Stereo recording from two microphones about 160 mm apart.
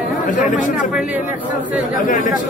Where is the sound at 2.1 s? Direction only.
55° left (ahead or behind).